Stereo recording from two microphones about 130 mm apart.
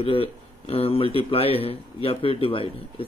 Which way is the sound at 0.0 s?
45° left (ahead or behind).